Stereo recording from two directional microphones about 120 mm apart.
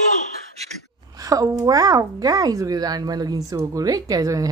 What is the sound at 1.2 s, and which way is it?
Speech, 30° right (ahead or behind).